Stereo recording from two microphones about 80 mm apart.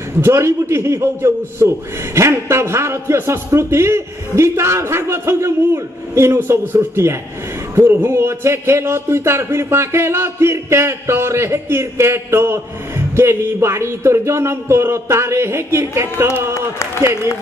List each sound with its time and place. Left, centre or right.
0.2 s speech: right
16.5 s speech: left
17.0 s speech: right